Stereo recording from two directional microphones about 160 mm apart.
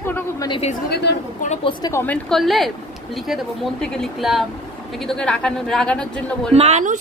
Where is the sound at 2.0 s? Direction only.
5° left (ahead or behind).